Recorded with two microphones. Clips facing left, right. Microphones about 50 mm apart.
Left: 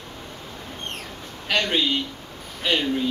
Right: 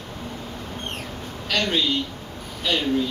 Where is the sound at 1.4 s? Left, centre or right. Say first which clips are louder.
Left 1 dB; centre.